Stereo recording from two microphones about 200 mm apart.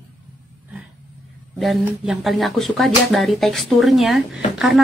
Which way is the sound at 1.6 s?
Centre (ahead or behind).